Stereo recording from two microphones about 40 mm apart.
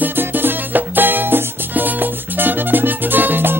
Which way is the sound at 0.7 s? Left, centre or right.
Right.